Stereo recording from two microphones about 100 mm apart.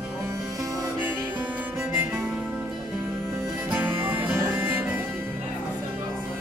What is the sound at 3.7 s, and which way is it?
Music, 20° right (ahead or behind).